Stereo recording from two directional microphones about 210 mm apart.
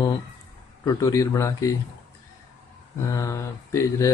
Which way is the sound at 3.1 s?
15° left (ahead or behind).